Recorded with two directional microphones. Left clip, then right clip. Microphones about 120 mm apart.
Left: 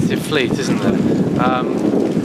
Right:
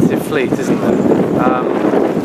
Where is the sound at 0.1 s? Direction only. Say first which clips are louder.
Right 2 dB; 30° left (ahead or behind).